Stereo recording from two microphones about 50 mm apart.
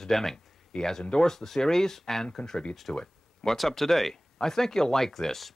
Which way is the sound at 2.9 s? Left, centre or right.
Centre.